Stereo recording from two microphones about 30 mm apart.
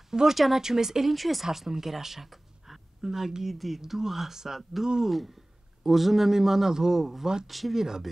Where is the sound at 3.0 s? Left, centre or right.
Centre.